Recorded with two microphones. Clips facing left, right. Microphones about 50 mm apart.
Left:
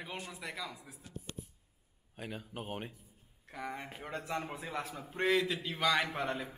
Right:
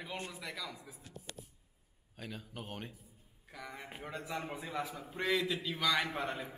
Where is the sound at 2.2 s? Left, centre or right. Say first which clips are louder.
Left 3 dB; centre.